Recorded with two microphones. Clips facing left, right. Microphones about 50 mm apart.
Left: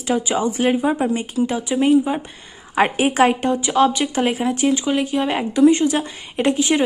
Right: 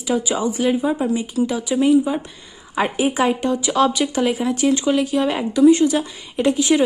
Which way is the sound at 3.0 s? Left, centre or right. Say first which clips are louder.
Left 2 dB; left.